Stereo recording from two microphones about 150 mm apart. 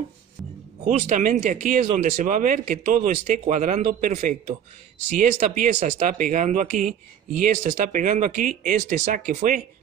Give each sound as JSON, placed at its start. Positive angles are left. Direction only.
{"t": 0.4, "sound": "music", "side_deg": 0}
{"t": 0.8, "sound": "speech", "side_deg": -55}